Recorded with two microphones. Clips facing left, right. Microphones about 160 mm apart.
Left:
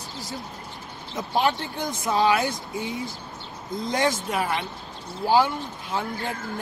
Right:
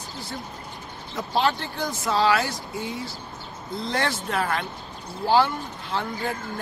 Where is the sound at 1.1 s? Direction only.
15° left (ahead or behind).